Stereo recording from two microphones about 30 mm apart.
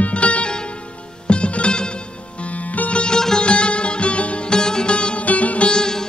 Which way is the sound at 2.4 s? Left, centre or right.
Left.